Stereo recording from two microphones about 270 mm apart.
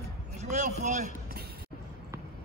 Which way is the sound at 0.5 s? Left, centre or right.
Right.